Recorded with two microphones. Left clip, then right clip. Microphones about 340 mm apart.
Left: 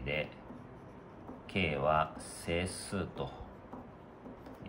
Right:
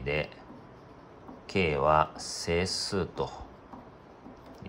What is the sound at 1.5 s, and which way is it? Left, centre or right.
Speech, centre.